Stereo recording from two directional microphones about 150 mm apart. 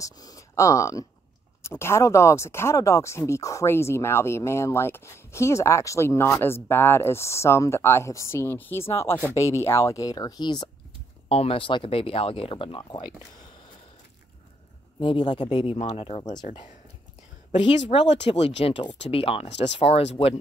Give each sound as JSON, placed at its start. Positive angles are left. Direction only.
{"t": 0.0, "sound": "speech", "side_deg": 25}
{"t": 11.2, "sound": "speech", "side_deg": 40}
{"t": 15.0, "sound": "speech", "side_deg": 30}
{"t": 15.5, "sound": "speech", "side_deg": 40}
{"t": 17.5, "sound": "speech", "side_deg": 50}